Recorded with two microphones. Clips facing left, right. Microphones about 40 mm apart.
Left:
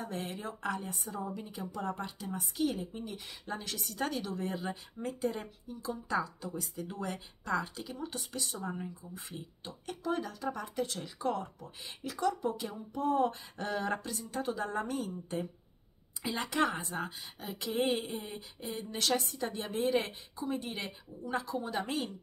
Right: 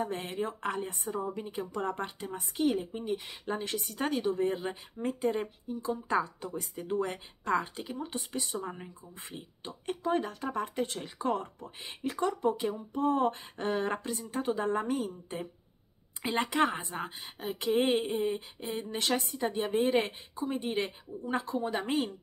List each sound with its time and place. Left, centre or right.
0.0 s speech: right
16.2 s speech: right
16.4 s speech: centre